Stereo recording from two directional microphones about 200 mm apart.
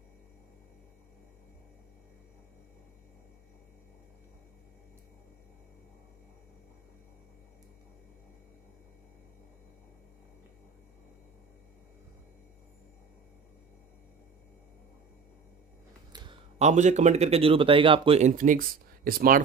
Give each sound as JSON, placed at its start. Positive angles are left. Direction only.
{"t": 16.5, "sound": "speech", "side_deg": -35}